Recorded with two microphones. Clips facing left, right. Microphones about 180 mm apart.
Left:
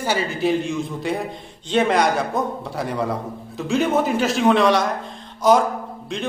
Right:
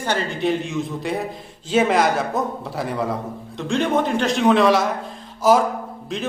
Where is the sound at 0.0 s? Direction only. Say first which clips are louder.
Left 1 dB; 5° left (ahead or behind).